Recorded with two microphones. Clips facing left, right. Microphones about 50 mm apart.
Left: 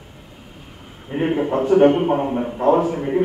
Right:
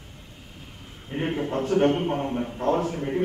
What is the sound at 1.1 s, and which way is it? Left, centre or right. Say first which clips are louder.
A man's voice: left 7 dB; centre.